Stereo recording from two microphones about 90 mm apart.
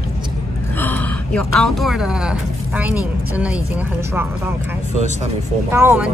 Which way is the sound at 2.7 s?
20° right (ahead or behind).